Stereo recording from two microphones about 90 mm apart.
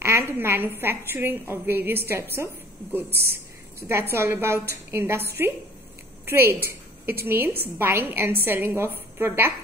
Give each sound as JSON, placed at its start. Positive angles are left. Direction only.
{"t": 0.0, "sound": "a woman's voice", "side_deg": -30}
{"t": 4.1, "sound": "a woman's voice", "side_deg": -30}